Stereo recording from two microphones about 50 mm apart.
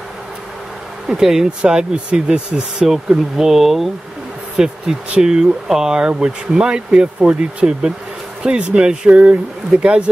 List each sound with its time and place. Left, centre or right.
1.0 s speech: centre
3.3 s speech: centre; by 10.0 s right